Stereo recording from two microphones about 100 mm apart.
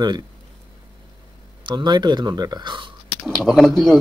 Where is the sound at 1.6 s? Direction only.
45° right (ahead or behind).